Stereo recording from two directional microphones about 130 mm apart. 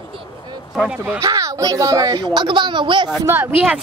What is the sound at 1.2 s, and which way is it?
Speech, 25° right (ahead or behind).